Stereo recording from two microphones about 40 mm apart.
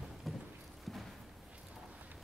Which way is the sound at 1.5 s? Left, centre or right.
Right.